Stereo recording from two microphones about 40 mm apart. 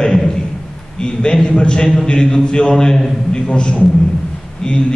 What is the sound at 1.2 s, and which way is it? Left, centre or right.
A man's voice, centre.